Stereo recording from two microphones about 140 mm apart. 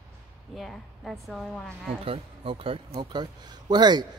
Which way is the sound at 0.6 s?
Centre (ahead or behind).